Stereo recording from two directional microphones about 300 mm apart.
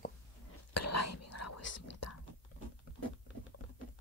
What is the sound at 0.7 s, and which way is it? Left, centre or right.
Whispering, left.